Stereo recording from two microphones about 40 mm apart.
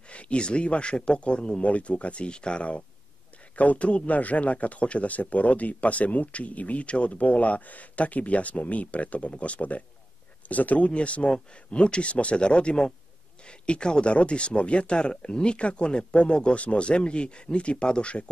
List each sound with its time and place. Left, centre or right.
0.1 s a man's voice: left